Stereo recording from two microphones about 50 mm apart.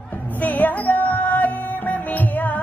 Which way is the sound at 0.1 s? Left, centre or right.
Left.